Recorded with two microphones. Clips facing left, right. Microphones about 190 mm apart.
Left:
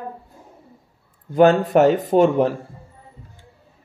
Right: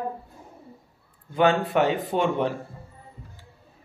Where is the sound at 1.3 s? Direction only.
40° left (ahead or behind).